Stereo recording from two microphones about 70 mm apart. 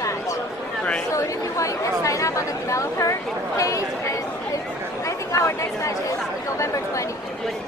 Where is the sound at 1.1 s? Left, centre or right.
Left.